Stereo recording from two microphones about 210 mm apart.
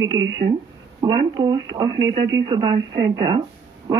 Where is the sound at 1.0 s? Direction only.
20° right (ahead or behind).